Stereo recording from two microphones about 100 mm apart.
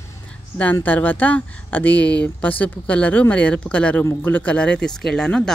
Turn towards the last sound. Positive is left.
turn(degrees=5)  # may be behind; listen again after turning